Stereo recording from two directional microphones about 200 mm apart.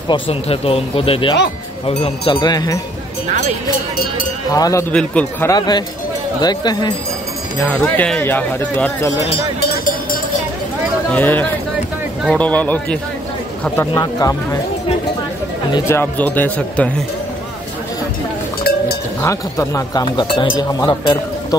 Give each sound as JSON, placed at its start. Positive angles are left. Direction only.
{"t": 0.1, "sound": "speech", "side_deg": 30}
{"t": 4.5, "sound": "speech", "side_deg": 15}
{"t": 4.9, "sound": "speech", "side_deg": 5}
{"t": 5.5, "sound": "speech", "side_deg": 20}
{"t": 7.6, "sound": "speech", "side_deg": 10}
{"t": 9.6, "sound": "a sound", "side_deg": 45}
{"t": 11.1, "sound": "speech", "side_deg": 10}
{"t": 15.9, "sound": "speech", "side_deg": 10}
{"t": 19.2, "sound": "speech", "side_deg": 15}